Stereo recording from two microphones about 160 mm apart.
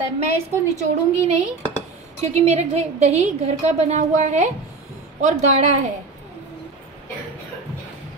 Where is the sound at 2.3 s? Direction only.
45° right (ahead or behind).